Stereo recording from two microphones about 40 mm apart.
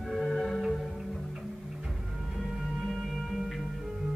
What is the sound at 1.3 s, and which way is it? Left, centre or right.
Music, centre.